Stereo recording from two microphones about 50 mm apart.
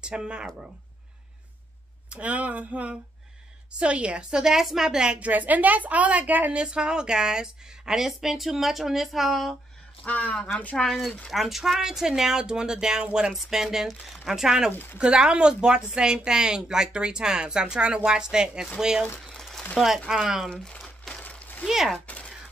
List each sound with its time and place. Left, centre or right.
0.0 s a woman's voice: centre
2.0 s a woman's voice: right
5.3 s a woman's voice: right
6.5 s a woman's voice: centre
10.0 s speech: left
10.9 s a woman's voice: centre
14.7 s speech: left
15.0 s a woman's voice: centre
19.2 s a sound: centre
20.1 s a woman's voice: centre
20.4 s speech: centre
21.2 s a sound: left
21.6 s a woman's voice: centre
22.0 s speech: left